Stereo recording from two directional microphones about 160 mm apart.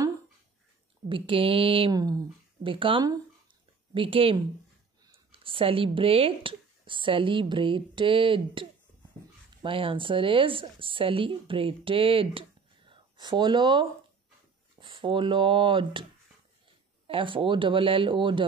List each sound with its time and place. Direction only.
1.0 s a woman's voice: 35° right (ahead or behind)
17.1 s a woman's voice: 35° right (ahead or behind)